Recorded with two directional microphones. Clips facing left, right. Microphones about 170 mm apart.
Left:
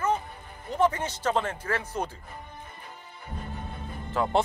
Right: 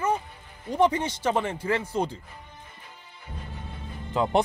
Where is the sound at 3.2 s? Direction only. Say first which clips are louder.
Left 3 dB; 50° left (ahead or behind).